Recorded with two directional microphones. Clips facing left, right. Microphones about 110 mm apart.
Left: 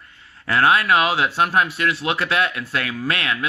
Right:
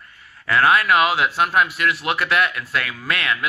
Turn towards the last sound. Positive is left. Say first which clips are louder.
# even
turn(degrees=30)  # may be behind; listen again after turning